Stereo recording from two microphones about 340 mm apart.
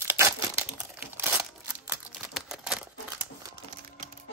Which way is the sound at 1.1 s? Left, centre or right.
Centre.